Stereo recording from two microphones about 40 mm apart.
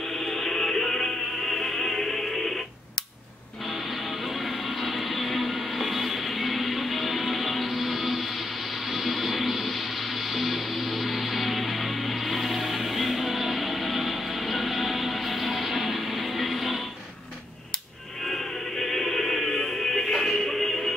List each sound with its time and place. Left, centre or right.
0.1 s music: centre
3.7 s music: centre
18.2 s music: centre